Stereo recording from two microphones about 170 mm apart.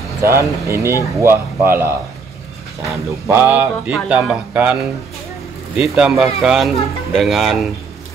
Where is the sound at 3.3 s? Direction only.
10° right (ahead or behind).